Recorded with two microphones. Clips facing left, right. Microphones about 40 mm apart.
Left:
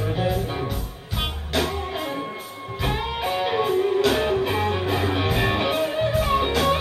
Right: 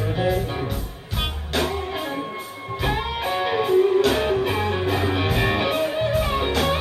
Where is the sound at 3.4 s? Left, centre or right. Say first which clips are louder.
Right 4 dB; centre.